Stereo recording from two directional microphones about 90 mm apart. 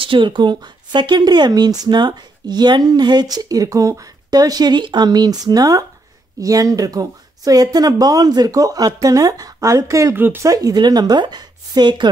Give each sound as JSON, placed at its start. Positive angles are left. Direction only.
{"t": 0.0, "sound": "speech", "side_deg": -70}
{"t": 10.1, "sound": "speech", "side_deg": -25}
{"t": 10.4, "sound": "speech", "side_deg": -40}